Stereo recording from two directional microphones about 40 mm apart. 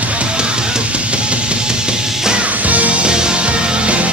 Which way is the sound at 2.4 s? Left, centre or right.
Right.